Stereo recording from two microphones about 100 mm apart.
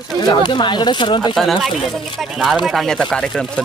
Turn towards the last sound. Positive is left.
turn(degrees=5)  # may be behind; listen again after turning